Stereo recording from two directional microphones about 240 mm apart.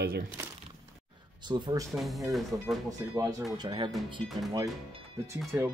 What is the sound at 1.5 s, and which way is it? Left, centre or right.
Speech, centre.